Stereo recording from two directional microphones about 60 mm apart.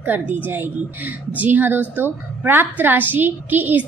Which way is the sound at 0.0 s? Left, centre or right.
Right.